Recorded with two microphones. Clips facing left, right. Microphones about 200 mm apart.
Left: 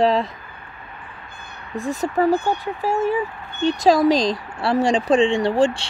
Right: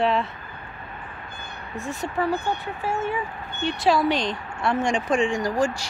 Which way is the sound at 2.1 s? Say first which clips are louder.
Left 6 dB; 40° left (ahead or behind).